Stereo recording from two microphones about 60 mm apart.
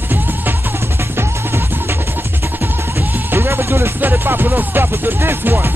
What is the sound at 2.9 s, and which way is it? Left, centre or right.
Music, right.